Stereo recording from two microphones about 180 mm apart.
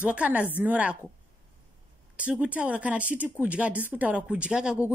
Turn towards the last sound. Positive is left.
turn(degrees=-5)  # may be behind; listen again after turning